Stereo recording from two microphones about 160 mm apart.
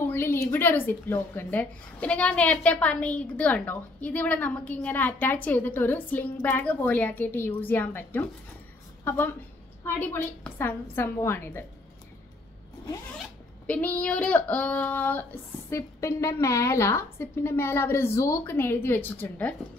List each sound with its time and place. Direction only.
0.0 s a woman's voice: 15° left (ahead or behind)
13.7 s a woman's voice: 10° left (ahead or behind)